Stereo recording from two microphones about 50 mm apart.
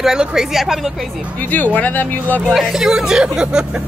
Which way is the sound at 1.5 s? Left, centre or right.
Left.